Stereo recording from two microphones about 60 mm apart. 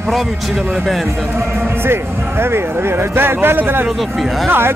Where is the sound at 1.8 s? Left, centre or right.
Right.